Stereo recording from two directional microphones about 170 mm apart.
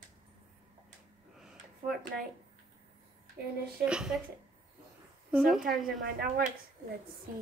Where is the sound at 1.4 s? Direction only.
5° right (ahead or behind).